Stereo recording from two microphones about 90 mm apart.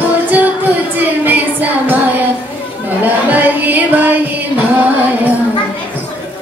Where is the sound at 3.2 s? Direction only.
20° right (ahead or behind).